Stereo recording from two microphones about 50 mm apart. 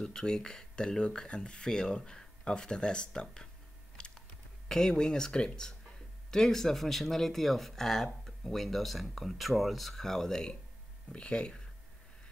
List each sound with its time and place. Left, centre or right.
0.0 s speech: centre
4.6 s speech: centre